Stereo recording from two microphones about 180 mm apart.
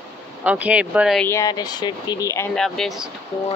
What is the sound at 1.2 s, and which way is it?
Speech, 15° left (ahead or behind).